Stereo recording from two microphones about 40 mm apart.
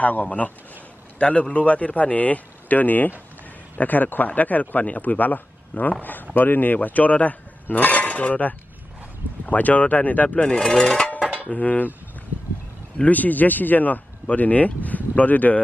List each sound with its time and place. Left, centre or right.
0.0 s a man's voice: left
10.8 s dishes: left
11.5 s a man's voice: left
13.0 s speech: left